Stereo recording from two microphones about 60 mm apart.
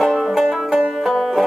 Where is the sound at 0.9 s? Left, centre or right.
Centre.